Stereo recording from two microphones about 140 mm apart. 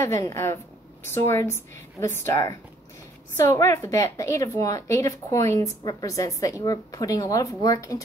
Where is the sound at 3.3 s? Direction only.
20° left (ahead or behind).